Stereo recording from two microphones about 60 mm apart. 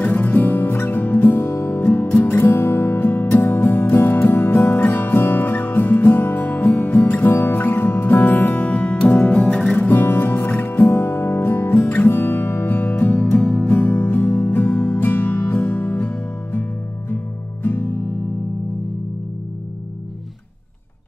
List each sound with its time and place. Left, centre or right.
0.0 s music: left
9.4 s music: centre
9.8 s music: left